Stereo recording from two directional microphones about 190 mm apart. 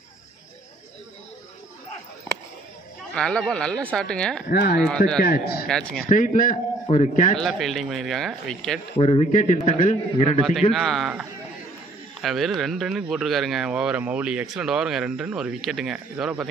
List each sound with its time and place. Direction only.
3.2 s speech: 5° left (ahead or behind)
4.5 s speech: 55° left (ahead or behind)
4.8 s speech: 5° left (ahead or behind)
5.2 s a man's voice: 55° left (ahead or behind)
5.7 s speech: 5° left (ahead or behind)
6.0 s a man's voice: 45° left (ahead or behind)
7.3 s speech: centre (ahead or behind)
8.9 s a man's voice: 30° left (ahead or behind)
10.7 s speech: centre (ahead or behind)